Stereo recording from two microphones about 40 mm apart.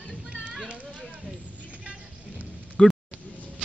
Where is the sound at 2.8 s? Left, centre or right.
Centre.